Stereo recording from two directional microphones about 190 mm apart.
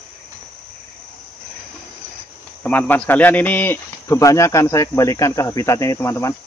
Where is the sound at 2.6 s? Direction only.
10° left (ahead or behind).